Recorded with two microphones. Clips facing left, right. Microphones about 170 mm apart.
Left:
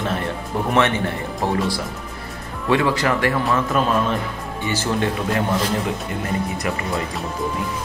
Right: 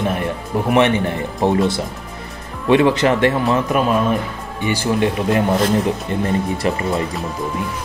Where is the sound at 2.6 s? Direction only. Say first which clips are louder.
Right 5 dB; 20° right (ahead or behind).